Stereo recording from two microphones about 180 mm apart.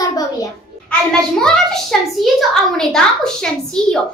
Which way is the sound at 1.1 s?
5° left (ahead or behind).